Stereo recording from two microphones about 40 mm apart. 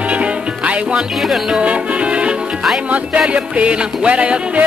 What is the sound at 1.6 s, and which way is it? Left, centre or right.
Music, right.